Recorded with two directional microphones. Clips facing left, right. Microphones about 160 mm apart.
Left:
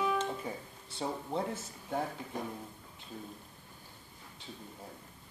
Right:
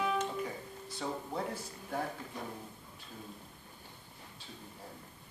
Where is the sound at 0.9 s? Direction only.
25° left (ahead or behind).